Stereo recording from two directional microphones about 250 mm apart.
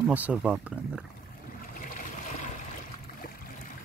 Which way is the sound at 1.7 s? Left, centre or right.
Left.